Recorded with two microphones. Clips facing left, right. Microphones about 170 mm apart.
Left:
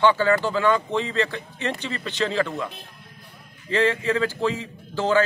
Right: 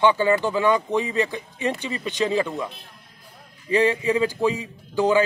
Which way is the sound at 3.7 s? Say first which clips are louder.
Right 2 dB; 15° right (ahead or behind).